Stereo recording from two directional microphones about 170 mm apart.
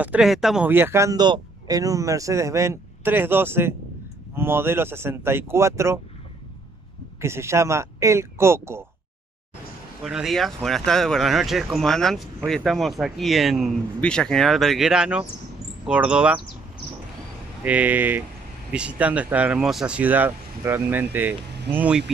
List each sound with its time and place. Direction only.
0.0 s speech: 5° right (ahead or behind)
7.2 s speech: 15° right (ahead or behind)
10.0 s speech: centre (ahead or behind)
17.6 s speech: 10° right (ahead or behind)